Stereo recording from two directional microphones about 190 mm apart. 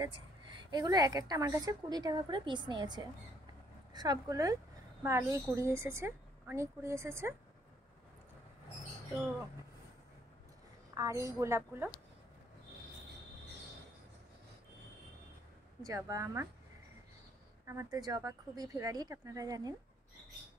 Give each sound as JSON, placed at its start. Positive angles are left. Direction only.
{"t": 0.0, "sound": "a woman's voice", "side_deg": -20}
{"t": 11.0, "sound": "a woman's voice", "side_deg": -15}
{"t": 15.8, "sound": "a woman's voice", "side_deg": -20}
{"t": 17.6, "sound": "a woman's voice", "side_deg": -20}